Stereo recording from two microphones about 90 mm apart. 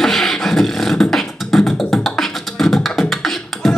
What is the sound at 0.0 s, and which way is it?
Beatboxing, 5° left (ahead or behind).